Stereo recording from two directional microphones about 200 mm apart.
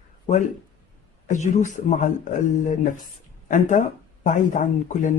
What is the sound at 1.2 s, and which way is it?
Speech, 35° left (ahead or behind).